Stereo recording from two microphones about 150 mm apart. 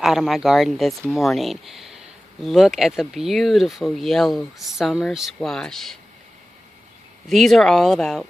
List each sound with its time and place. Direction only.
0.0 s speech: centre (ahead or behind)
7.2 s speech: centre (ahead or behind)